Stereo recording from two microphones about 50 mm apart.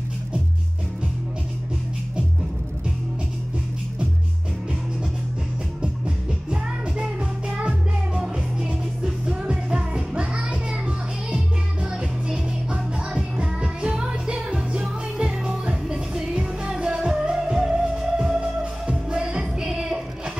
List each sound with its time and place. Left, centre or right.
5.8 s music: centre